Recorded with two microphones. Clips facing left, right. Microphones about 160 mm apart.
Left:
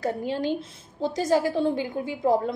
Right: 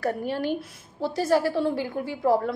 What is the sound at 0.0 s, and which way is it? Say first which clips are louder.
A woman's voice: even; 15° left (ahead or behind).